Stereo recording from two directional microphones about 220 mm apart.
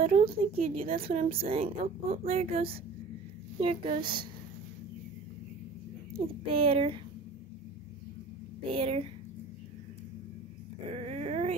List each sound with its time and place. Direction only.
0.0 s a woman's voice: 25° right (ahead or behind)
6.1 s a woman's voice: 25° right (ahead or behind)
8.7 s a woman's voice: 25° right (ahead or behind)
11.0 s dog: 30° right (ahead or behind)